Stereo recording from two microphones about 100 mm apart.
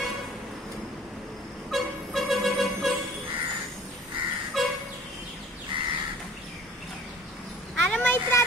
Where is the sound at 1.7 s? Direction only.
Centre (ahead or behind).